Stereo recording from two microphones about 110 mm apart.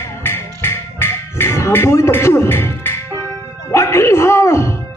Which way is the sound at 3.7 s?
25° left (ahead or behind).